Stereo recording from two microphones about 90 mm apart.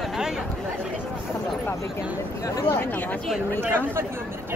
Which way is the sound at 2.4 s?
40° left (ahead or behind).